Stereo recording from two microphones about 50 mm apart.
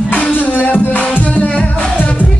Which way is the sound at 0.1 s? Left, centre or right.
Left.